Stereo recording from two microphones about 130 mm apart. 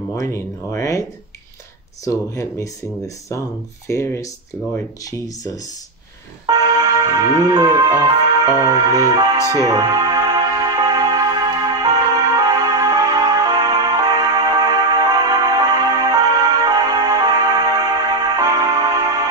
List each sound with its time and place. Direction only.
0.1 s speech: 25° left (ahead or behind)
2.0 s speech: 25° left (ahead or behind)
6.4 s speech: 30° right (ahead or behind)
9.5 s music: 30° right (ahead or behind)